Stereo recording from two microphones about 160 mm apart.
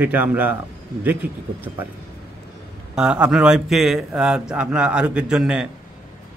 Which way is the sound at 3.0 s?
5° right (ahead or behind).